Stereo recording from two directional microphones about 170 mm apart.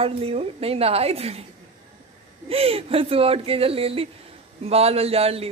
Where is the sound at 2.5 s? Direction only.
35° right (ahead or behind).